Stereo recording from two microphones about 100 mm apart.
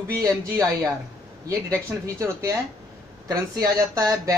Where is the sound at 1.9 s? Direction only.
30° right (ahead or behind).